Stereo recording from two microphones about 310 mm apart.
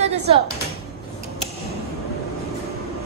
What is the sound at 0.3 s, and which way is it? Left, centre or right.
Speech, centre.